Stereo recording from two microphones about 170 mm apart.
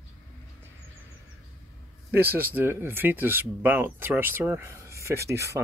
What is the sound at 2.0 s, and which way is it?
Speech, 10° right (ahead or behind).